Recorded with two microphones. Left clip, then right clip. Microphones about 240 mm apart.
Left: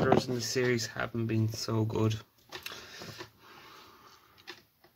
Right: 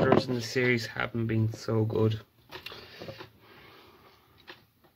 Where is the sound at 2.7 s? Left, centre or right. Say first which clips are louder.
Right 3 dB; left.